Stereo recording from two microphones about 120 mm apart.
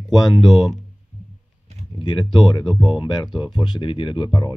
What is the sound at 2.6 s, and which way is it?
Speech, centre (ahead or behind).